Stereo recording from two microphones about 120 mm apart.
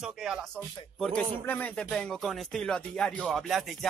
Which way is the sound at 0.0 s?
5° right (ahead or behind).